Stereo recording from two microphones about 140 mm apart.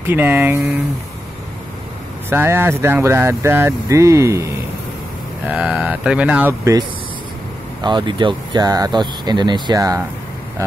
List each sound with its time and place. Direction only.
0.0 s speech: 15° right (ahead or behind)
2.2 s speech: 15° right (ahead or behind)
5.5 s speech: 10° right (ahead or behind)
6.6 s speech: 25° right (ahead or behind)